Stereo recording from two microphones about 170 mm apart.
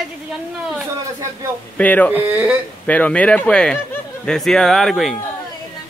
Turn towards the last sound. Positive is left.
turn(degrees=0)  # may be behind; listen again after turning